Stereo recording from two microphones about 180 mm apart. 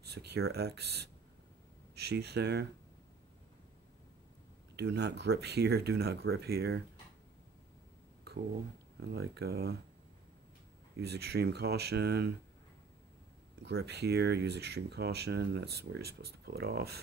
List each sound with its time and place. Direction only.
0.1 s speech: 65° right (ahead or behind)
4.7 s speech: 70° right (ahead or behind)
9.0 s speech: 65° right (ahead or behind)
11.0 s speech: 65° right (ahead or behind)
13.6 s speech: 70° right (ahead or behind)